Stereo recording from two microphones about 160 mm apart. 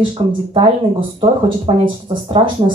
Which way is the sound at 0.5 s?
35° right (ahead or behind).